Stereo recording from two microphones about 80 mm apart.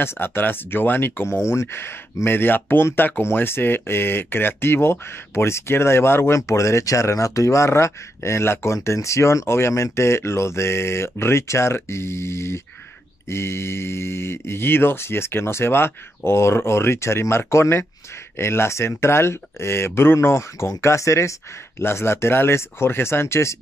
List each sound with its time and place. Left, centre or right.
0.0 s speech: left